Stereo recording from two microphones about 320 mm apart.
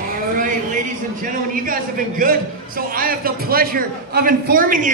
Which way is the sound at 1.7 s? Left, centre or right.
Right.